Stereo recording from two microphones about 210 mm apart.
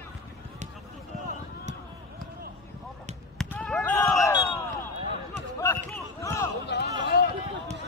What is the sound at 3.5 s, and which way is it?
Basketball bounce, 5° left (ahead or behind).